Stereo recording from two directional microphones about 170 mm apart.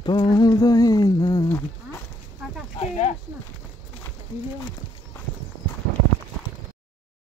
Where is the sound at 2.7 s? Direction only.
40° left (ahead or behind).